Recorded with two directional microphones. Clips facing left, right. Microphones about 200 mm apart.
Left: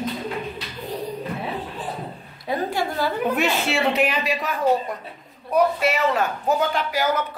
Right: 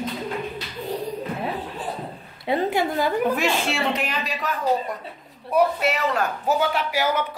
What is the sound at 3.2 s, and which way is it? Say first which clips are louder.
Speech: even; 5° left (ahead or behind).